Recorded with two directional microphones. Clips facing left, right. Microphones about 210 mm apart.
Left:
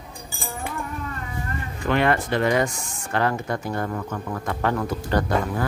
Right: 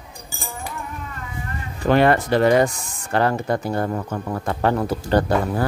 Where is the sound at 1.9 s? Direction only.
40° right (ahead or behind).